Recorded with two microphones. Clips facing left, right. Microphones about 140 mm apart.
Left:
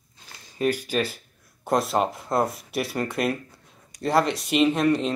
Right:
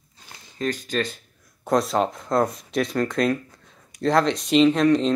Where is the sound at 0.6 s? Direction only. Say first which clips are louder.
Left 2 dB; 10° left (ahead or behind).